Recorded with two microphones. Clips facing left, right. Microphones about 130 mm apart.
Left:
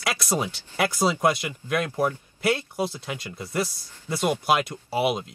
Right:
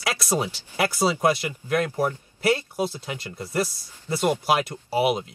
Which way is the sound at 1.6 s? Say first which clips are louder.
Right 2 dB; 15° right (ahead or behind).